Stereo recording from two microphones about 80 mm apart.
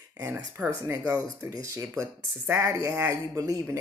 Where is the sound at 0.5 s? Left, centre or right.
Right.